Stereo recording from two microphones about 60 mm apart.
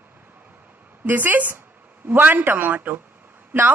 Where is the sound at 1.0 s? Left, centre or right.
Right.